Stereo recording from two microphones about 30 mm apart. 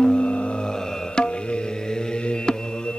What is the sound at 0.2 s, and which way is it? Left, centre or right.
Music, left.